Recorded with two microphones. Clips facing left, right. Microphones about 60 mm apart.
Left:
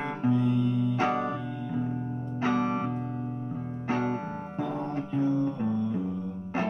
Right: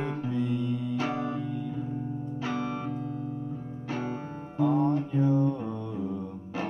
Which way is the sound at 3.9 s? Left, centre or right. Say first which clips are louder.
Left 5 dB; left.